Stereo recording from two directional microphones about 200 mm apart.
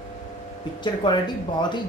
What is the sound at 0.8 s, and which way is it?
Speech, 20° left (ahead or behind).